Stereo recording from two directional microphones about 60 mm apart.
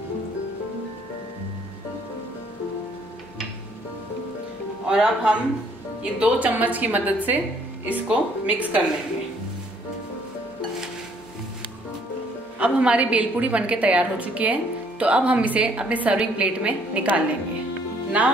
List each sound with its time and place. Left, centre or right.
4.8 s a woman's voice: centre
12.5 s a woman's voice: centre